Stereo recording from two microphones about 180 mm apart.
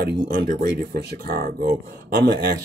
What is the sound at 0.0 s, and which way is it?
Speech, 55° right (ahead or behind).